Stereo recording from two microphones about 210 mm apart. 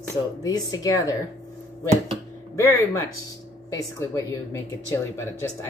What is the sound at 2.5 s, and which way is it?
Speech, 15° left (ahead or behind).